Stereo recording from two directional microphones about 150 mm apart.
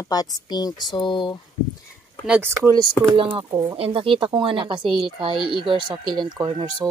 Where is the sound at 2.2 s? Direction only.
10° right (ahead or behind).